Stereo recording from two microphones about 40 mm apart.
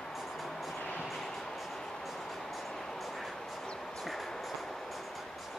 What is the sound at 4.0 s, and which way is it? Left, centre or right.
Train, centre.